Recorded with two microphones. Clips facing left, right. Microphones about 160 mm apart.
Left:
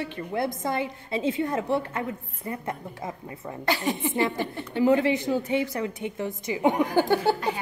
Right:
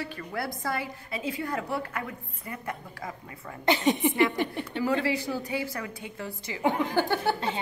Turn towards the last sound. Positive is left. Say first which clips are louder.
# left 4 dB
turn(degrees=20)  # may be behind; listen again after turning